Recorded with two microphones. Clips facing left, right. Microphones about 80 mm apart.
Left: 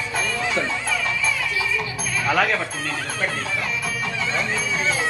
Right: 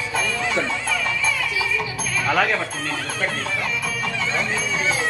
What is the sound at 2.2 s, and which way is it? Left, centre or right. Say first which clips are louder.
Speech: even; centre.